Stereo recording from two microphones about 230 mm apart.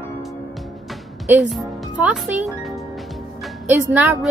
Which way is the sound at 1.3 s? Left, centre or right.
Centre.